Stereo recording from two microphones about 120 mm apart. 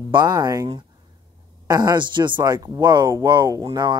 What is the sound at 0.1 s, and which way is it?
Speech, 35° right (ahead or behind).